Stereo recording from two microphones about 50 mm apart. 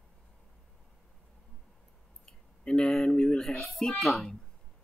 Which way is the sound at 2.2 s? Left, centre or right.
Centre.